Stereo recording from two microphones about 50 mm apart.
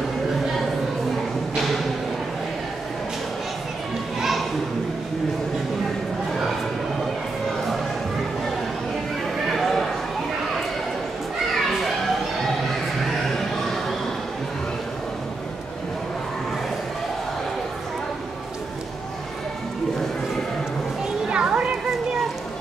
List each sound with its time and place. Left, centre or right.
4.2 s children playing: centre
9.5 s a sound: centre
21.3 s music: centre